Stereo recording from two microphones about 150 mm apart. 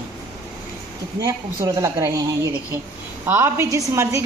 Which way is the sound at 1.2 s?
25° right (ahead or behind).